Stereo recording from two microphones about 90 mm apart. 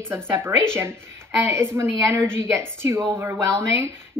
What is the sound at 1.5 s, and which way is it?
A woman's voice, 30° right (ahead or behind).